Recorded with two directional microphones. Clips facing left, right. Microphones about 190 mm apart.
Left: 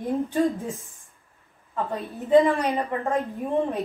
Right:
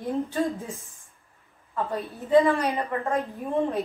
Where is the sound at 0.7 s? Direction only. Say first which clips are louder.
Left 3 dB; centre (ahead or behind).